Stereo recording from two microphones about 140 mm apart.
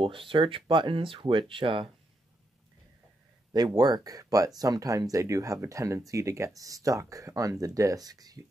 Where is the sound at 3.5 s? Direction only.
30° right (ahead or behind).